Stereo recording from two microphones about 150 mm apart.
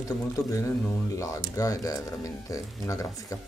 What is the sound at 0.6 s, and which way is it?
Speech, 20° left (ahead or behind).